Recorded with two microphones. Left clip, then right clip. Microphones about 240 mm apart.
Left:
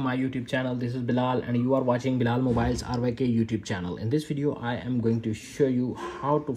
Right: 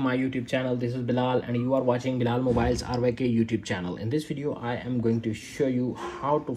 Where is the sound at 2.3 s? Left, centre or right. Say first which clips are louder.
Right 2 dB; left.